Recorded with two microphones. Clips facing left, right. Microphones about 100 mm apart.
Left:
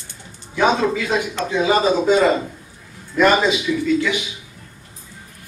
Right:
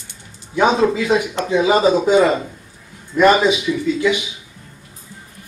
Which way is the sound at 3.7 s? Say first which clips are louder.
Right 1 dB; 15° right (ahead or behind).